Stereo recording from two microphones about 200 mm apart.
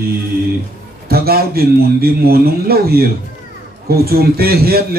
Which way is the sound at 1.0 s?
50° right (ahead or behind).